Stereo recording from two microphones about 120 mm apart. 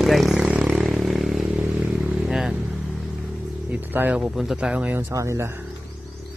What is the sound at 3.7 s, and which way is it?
Speech, 15° right (ahead or behind).